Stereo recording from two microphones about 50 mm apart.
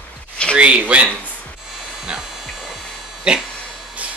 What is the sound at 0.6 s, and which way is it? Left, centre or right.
Speech, right.